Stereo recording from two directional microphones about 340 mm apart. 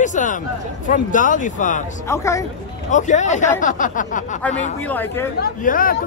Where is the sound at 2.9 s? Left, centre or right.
Left.